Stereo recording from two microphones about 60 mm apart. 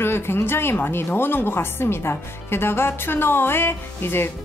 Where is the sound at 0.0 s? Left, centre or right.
Left.